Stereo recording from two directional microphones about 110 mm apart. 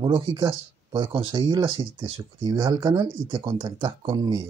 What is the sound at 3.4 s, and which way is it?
Speech, 55° right (ahead or behind).